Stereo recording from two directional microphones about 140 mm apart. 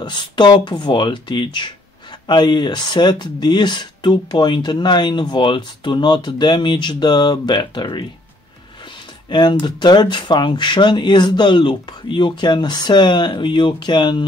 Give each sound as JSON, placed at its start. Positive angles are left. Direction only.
{"t": 0.0, "sound": "speech", "side_deg": 35}
{"t": 9.3, "sound": "speech", "side_deg": 35}